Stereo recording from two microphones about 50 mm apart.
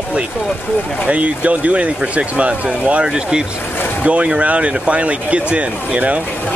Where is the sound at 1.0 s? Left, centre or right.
Right.